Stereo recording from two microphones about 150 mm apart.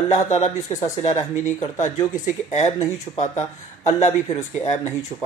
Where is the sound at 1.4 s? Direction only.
50° left (ahead or behind).